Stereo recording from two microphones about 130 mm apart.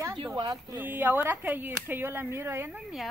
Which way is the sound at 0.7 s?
15° right (ahead or behind).